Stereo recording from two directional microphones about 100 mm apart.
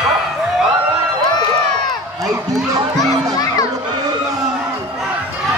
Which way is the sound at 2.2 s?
35° right (ahead or behind).